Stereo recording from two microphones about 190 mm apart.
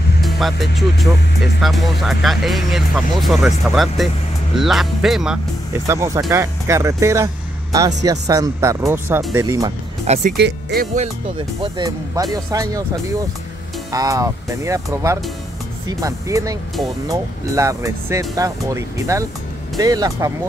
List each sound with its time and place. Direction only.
0.2 s speech: centre (ahead or behind)
5.9 s speech: 15° right (ahead or behind)
10.0 s speech: 35° right (ahead or behind)
10.3 s speech: 55° right (ahead or behind)
11.3 s speech: 25° right (ahead or behind)